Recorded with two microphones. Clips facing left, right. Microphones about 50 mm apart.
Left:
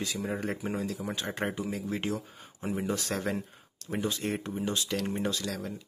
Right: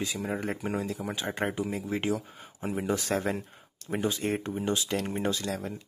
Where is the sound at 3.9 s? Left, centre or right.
Centre.